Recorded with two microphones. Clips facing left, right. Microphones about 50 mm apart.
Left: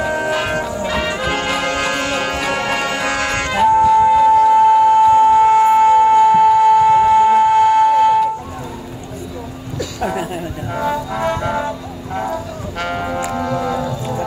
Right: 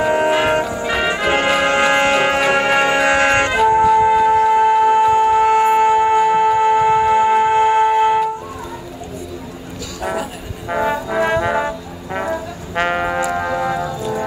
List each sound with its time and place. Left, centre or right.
0.0 s music: right
4.3 s music: right
10.7 s music: right